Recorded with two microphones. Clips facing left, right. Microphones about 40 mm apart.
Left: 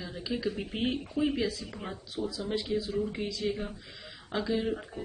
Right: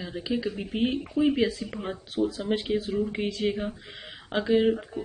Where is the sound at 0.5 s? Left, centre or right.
Centre.